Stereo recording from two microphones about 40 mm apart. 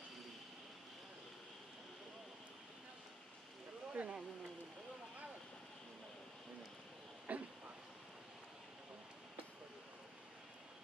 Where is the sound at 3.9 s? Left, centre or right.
Right.